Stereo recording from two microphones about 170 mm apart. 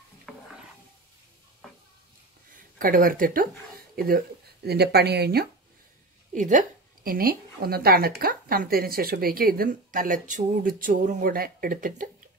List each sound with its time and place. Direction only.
0.3 s stir: centre (ahead or behind)
2.8 s a woman's voice: 55° right (ahead or behind)
6.3 s a woman's voice: 45° right (ahead or behind)